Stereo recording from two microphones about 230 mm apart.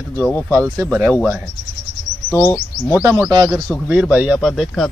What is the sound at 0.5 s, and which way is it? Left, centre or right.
Speech, centre.